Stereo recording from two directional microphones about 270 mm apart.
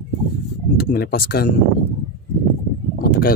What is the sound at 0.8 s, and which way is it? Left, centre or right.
Speech, left.